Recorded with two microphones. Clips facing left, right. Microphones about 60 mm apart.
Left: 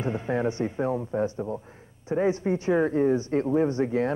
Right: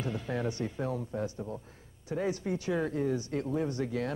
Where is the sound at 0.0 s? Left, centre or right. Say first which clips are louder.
Left 7 dB; left.